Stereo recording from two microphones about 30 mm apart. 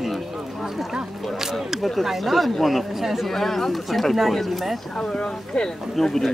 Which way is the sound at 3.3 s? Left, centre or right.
Centre.